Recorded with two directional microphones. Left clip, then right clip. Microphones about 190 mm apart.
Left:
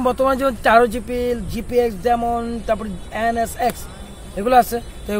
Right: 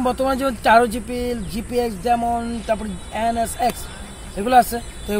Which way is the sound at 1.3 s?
35° left (ahead or behind).